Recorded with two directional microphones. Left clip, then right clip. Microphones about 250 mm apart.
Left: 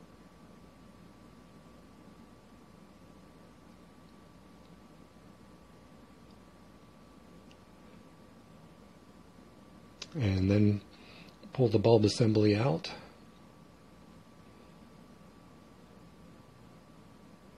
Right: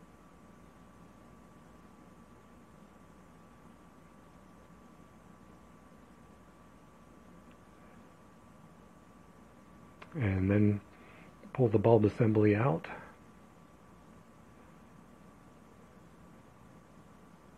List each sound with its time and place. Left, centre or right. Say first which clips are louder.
9.9 s speech: left 1 dB; centre